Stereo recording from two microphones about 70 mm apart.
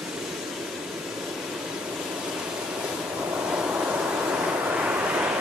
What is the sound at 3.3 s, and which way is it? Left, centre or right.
Waves, centre.